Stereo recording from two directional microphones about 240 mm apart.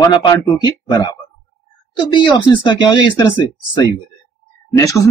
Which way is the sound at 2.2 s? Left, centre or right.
Centre.